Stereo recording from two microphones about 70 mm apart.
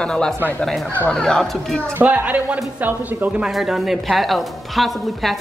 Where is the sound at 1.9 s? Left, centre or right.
Right.